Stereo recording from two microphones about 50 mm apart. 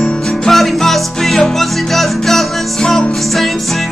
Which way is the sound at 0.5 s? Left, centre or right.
Centre.